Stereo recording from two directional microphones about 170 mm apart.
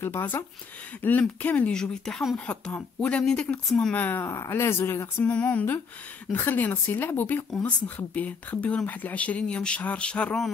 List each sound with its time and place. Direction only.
0.0 s speech: 10° left (ahead or behind)